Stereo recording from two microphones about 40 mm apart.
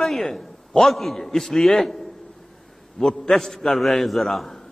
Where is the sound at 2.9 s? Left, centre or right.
Centre.